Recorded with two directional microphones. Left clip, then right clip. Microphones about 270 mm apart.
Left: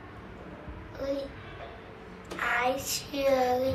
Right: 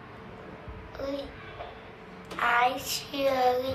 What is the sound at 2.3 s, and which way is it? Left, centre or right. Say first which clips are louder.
Child singing: right 3 dB; right.